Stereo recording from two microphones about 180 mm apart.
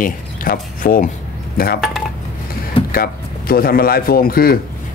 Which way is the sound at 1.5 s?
55° left (ahead or behind).